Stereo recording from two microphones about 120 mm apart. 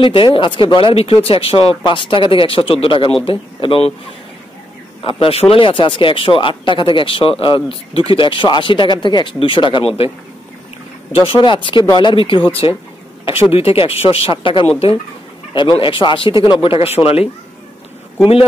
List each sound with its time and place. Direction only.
0.0 s speech: 45° left (ahead or behind)
5.0 s speech: 50° left (ahead or behind)
13.5 s speech: 55° left (ahead or behind)